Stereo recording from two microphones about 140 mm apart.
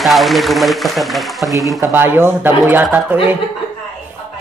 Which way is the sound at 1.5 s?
25° right (ahead or behind).